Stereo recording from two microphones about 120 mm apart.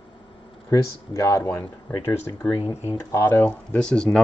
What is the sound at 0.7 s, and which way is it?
Speech, 30° left (ahead or behind).